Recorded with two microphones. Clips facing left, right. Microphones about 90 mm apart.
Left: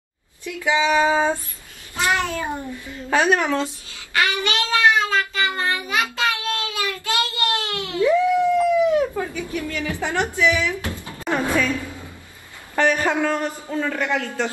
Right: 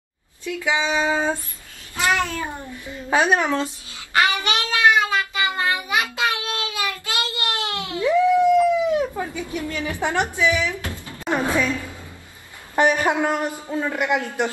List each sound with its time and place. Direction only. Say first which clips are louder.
0.5 s speech: left 3 dB; 20° right (ahead or behind)
1.0 s a sound: left 3 dB; 20° left (ahead or behind)
3.1 s a man's voice: even; 15° right (ahead or behind)
4.1 s child singing: right 2 dB; 25° right (ahead or behind)
10.3 s speech: left 1 dB; 20° right (ahead or behind)
10.7 s a sound: left 2 dB; 20° left (ahead or behind)
11.2 s a woman's voice: even; 15° right (ahead or behind)
12.7 s a man's voice: right 1 dB; 15° right (ahead or behind)